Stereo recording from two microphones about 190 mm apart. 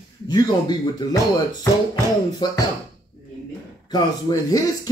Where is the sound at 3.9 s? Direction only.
20° left (ahead or behind).